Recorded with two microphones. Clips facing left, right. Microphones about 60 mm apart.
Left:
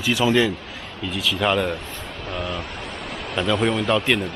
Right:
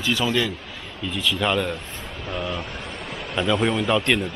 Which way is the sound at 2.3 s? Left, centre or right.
Centre.